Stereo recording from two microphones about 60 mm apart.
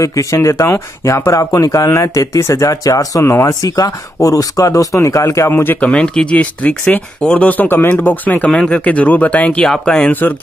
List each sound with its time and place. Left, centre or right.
0.0 s speech: left
3.6 s speech: left
5.5 s speech: left
5.8 s speech: centre
8.5 s speech: centre
9.7 s speech: centre